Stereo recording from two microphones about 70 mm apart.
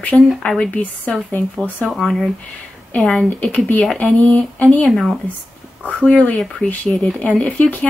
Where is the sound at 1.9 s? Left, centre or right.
Centre.